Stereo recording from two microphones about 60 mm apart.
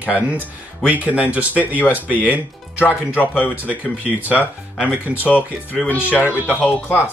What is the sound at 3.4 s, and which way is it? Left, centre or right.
Speech, right.